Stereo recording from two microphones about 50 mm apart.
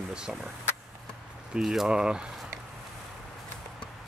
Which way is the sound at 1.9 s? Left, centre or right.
Centre.